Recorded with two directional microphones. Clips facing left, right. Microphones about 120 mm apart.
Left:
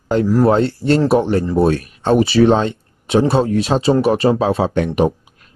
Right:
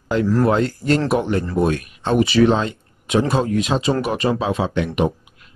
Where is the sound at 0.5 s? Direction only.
30° left (ahead or behind).